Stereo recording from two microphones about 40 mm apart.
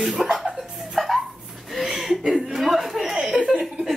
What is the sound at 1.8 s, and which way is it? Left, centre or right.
Chuckle, centre.